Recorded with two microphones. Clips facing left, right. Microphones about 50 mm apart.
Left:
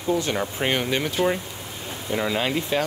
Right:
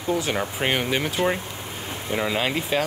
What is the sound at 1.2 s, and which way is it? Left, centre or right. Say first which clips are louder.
Speech: left 1 dB; right.